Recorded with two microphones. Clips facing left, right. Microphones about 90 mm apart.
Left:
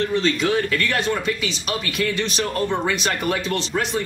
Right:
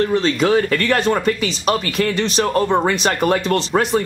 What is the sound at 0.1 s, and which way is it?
Speech, 45° right (ahead or behind).